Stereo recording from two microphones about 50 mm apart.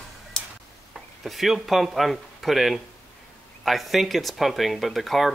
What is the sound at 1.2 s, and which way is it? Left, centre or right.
Speech, centre.